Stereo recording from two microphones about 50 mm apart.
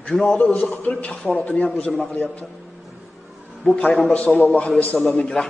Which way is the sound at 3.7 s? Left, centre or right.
Left.